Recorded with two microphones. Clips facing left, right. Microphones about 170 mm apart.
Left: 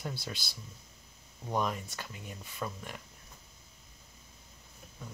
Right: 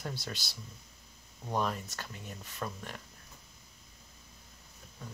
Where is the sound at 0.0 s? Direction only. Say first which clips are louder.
Even; 10° left (ahead or behind).